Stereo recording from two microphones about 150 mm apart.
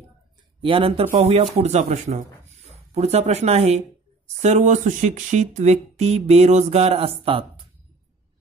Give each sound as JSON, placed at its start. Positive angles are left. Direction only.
{"t": 0.6, "sound": "speech", "side_deg": -35}